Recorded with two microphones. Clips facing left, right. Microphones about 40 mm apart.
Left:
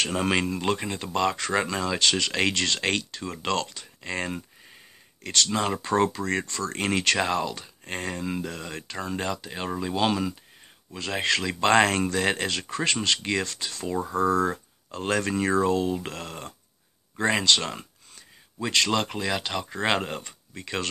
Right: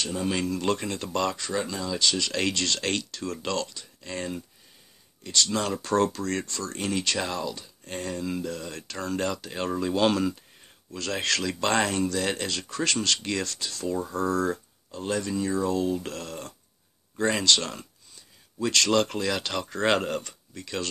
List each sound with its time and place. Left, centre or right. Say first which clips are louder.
0.3 s speech: left 1 dB; left
0.6 s speech: even; left
1.5 s speech: left 4 dB; left
2.2 s speech: left 2 dB; left
5.5 s speech: left 1 dB; left
7.2 s speech: left 4 dB; left; by 10.3 s centre
10.9 s speech: left 2 dB; centre
11.8 s speech: left 3 dB; left
12.1 s speech: left 3 dB; left
14.9 s speech: left 3 dB; left
15.7 s speech: left 1 dB; left